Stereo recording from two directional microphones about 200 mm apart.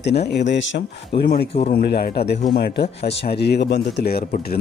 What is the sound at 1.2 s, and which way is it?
A man's voice, 50° left (ahead or behind).